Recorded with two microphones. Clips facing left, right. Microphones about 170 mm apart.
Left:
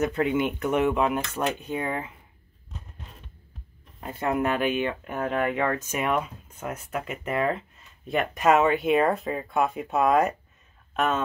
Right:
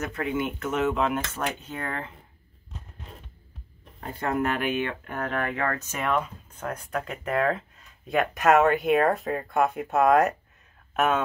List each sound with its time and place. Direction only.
0.0 s speech: 20° left (ahead or behind)
4.3 s speech: 20° left (ahead or behind); by 11.2 s 10° right (ahead or behind)